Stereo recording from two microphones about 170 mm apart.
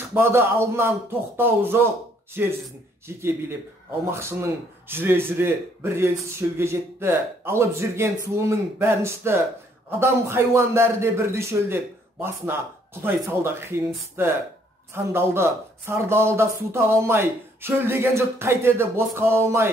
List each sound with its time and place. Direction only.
0.1 s speech: 15° right (ahead or behind)
3.2 s speech: 15° right (ahead or behind)